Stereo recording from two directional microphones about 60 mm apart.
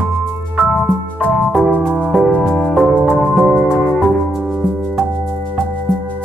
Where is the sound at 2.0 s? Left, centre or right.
Centre.